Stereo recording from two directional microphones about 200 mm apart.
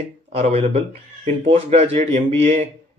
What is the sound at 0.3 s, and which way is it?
Speech, 30° right (ahead or behind).